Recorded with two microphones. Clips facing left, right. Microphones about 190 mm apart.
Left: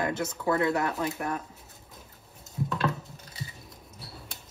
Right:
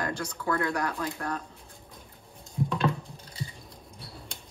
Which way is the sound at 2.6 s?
5° left (ahead or behind).